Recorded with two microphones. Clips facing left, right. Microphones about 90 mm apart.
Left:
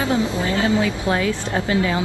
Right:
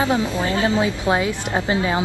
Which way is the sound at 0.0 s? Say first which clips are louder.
Right 1 dB; 20° right (ahead or behind).